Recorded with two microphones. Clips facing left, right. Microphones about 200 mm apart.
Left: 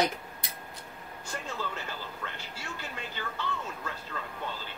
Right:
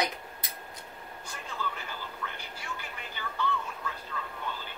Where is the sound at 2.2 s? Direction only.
50° left (ahead or behind).